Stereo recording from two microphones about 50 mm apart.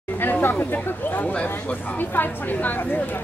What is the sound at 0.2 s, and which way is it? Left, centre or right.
Speech, left.